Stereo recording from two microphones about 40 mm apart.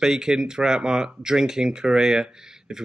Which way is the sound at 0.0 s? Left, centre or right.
Centre.